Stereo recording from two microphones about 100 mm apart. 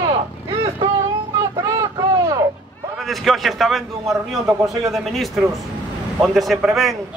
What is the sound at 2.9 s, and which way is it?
A man's voice, centre (ahead or behind).